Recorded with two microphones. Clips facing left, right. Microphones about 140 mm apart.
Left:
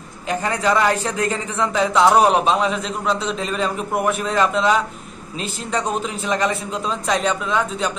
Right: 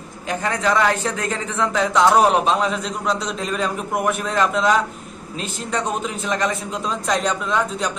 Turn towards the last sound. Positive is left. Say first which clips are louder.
# even
turn(degrees=5)  # may be behind; listen again after turning